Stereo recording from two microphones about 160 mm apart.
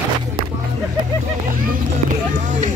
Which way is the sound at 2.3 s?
50° right (ahead or behind).